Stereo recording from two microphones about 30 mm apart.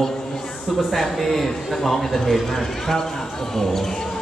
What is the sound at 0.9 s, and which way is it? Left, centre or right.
A man's voice, centre.